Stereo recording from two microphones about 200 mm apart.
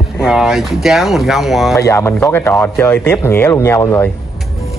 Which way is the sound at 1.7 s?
15° left (ahead or behind).